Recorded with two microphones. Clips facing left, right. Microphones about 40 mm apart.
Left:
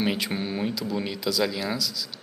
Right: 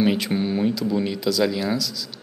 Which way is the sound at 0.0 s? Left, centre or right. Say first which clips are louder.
Right 6 dB; centre.